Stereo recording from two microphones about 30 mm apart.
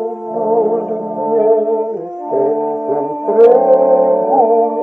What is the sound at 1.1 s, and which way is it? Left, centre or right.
Music, right.